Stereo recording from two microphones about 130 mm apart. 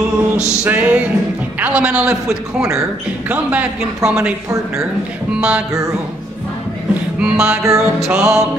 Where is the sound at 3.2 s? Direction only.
10° right (ahead or behind).